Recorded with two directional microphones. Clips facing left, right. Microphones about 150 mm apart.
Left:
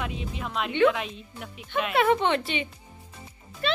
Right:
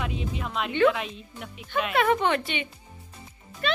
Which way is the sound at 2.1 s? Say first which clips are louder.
Even; 25° left (ahead or behind).